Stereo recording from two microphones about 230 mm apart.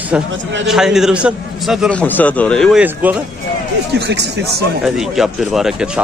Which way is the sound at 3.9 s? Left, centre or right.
Right.